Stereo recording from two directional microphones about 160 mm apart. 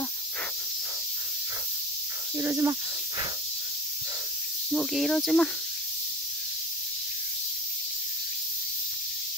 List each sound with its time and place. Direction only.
2.3 s speech: 15° right (ahead or behind)
4.6 s speech: centre (ahead or behind)